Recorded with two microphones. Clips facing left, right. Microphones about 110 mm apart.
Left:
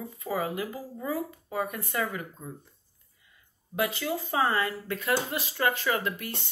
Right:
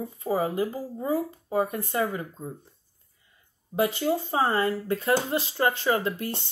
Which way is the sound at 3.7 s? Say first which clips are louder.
Right 5 dB; 30° right (ahead or behind).